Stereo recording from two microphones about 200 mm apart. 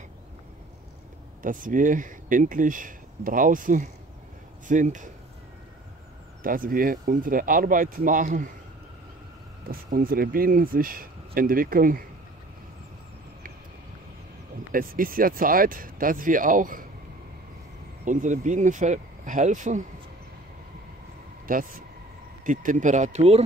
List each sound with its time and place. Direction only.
1.4 s speech: 40° right (ahead or behind)
6.4 s speech: 45° right (ahead or behind)
9.7 s speech: 45° right (ahead or behind)
14.7 s speech: 45° right (ahead or behind)
18.0 s speech: 40° right (ahead or behind)
21.5 s speech: 45° right (ahead or behind)